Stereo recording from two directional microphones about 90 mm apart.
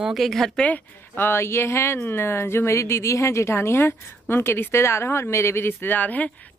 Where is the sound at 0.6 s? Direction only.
20° left (ahead or behind).